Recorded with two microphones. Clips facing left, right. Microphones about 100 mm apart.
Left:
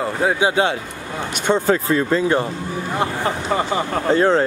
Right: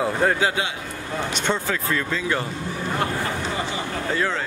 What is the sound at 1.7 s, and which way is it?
Speech, 35° left (ahead or behind).